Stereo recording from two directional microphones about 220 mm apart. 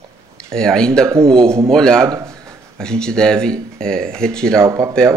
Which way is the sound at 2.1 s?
15° right (ahead or behind).